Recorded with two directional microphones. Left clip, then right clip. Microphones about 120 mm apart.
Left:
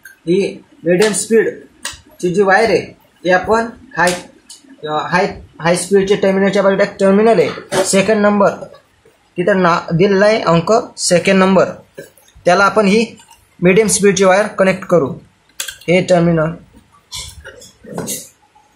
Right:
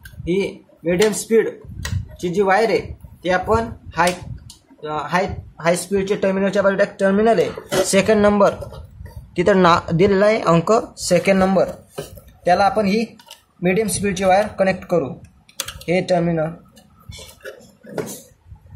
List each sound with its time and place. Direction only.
0.3 s speech: 25° right (ahead or behind)
4.8 s speech: 5° right (ahead or behind)
7.7 s speech: 30° right (ahead or behind)
9.3 s speech: 45° right (ahead or behind); by 10.5 s 25° right (ahead or behind)
10.5 s speech: 35° right (ahead or behind)
11.3 s speech: 5° left (ahead or behind)
12.4 s speech: 15° left (ahead or behind)